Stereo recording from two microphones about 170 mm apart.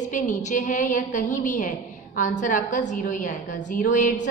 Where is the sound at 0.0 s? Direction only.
50° left (ahead or behind).